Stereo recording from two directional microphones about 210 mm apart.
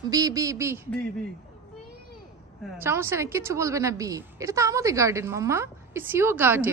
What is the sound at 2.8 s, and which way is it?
A woman's voice, 10° right (ahead or behind).